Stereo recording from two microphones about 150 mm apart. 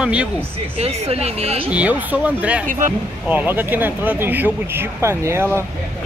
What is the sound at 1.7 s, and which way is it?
Speech, 10° right (ahead or behind).